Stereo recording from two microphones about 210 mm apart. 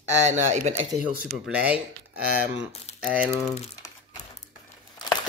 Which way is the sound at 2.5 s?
30° left (ahead or behind).